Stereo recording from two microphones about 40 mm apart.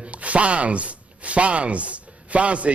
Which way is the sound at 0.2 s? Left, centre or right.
Right.